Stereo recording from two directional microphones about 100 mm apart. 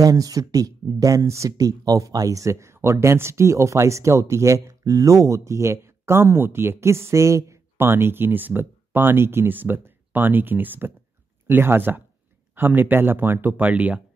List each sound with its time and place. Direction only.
0.0 s speech: 35° right (ahead or behind); by 14.0 s 15° right (ahead or behind)